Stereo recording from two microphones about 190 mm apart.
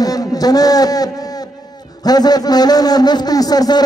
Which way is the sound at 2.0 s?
20° left (ahead or behind).